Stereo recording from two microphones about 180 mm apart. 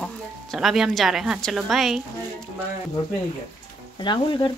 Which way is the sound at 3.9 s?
25° left (ahead or behind).